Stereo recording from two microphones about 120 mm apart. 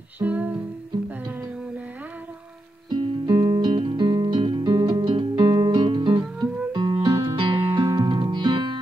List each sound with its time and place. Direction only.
0.2 s music: 15° right (ahead or behind)
2.9 s music: 35° right (ahead or behind)
3.7 s music: 45° right (ahead or behind)
4.4 s music: 50° right (ahead or behind)
4.7 s music: 35° right (ahead or behind)
5.0 s music: 50° right (ahead or behind)
5.5 s guitar: 35° right (ahead or behind)
6.7 s music: 40° right (ahead or behind)